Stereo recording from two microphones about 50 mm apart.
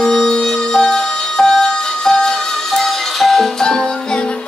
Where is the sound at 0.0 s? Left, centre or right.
Centre.